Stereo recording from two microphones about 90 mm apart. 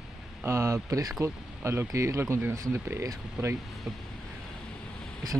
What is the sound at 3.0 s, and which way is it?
Speech, 35° right (ahead or behind).